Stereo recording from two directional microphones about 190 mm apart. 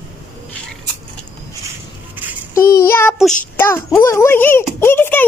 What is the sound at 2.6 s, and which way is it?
Child singing, 15° left (ahead or behind).